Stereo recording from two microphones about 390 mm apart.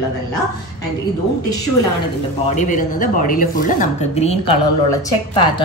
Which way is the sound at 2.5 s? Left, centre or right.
Centre.